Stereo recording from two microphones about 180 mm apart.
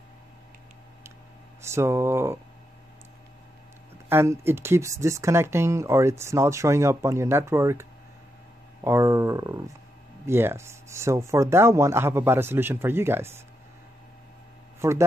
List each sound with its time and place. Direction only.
1.6 s speech: 15° right (ahead or behind)
4.1 s speech: 15° right (ahead or behind)
8.8 s speech: 15° right (ahead or behind)
14.8 s speech: 15° right (ahead or behind)